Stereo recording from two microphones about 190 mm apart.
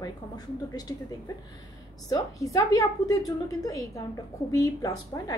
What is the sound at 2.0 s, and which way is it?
A woman's voice, 20° left (ahead or behind).